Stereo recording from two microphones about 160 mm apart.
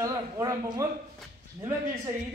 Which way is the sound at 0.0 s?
20° right (ahead or behind).